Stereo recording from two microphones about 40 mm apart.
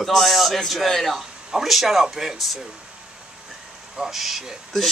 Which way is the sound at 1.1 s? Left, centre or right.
Centre.